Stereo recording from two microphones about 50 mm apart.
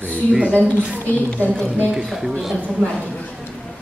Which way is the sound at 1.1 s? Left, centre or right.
Left.